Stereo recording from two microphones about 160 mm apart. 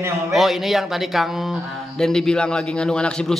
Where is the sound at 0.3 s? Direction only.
Centre (ahead or behind).